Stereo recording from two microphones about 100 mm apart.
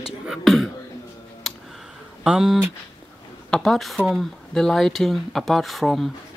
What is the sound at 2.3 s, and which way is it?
Speech, 5° right (ahead or behind).